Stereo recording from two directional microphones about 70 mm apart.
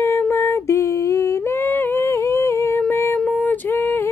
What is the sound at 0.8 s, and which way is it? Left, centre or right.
Humming, left.